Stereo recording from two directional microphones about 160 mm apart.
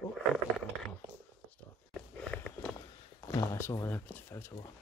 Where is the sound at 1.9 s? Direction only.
5° left (ahead or behind).